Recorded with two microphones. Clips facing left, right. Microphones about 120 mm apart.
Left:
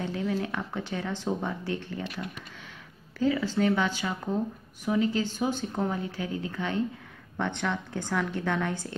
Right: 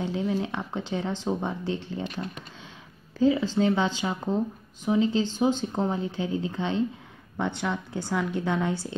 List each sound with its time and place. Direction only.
0.0 s speech: 15° right (ahead or behind)
7.3 s speech: 10° right (ahead or behind)